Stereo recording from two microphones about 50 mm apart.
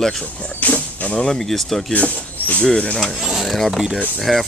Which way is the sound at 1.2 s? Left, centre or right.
Centre.